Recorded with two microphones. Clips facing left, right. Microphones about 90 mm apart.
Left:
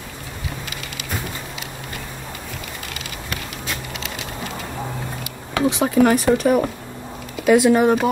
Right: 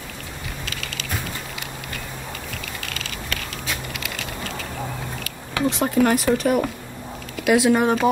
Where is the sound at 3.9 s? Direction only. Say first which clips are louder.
Left 1 dB; 20° left (ahead or behind).